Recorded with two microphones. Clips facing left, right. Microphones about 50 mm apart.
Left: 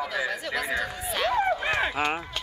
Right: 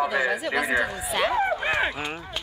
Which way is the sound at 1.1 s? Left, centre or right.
Centre.